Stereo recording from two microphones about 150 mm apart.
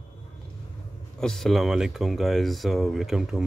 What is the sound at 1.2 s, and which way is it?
Speech, 5° left (ahead or behind).